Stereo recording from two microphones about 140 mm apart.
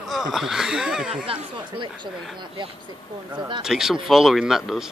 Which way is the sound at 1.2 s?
40° right (ahead or behind).